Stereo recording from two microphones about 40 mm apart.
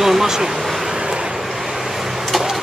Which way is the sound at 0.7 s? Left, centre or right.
Centre.